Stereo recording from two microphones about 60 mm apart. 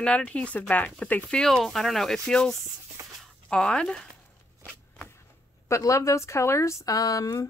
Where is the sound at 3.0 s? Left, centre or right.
Right.